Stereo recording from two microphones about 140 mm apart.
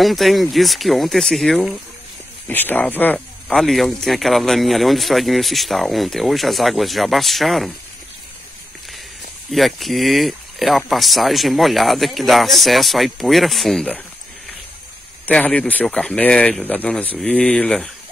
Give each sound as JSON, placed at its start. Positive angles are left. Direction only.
{"t": 0.0, "sound": "speech", "side_deg": 0}
{"t": 2.4, "sound": "speech", "side_deg": 15}
{"t": 3.5, "sound": "speech", "side_deg": 0}
{"t": 9.5, "sound": "speech", "side_deg": 0}
{"t": 15.2, "sound": "speech", "side_deg": 10}